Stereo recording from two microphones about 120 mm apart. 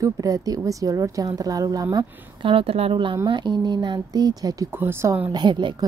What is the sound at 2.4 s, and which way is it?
A woman's voice, 50° right (ahead or behind).